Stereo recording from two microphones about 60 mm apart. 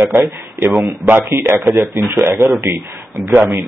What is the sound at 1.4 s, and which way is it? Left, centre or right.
Speech, right.